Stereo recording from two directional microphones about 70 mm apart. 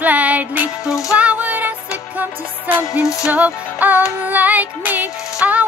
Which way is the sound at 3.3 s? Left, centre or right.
Right.